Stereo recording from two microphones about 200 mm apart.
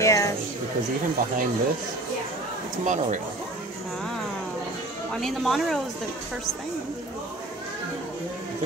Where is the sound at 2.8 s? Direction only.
40° right (ahead or behind).